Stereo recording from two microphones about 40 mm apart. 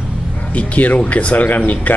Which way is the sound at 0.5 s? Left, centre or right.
Left.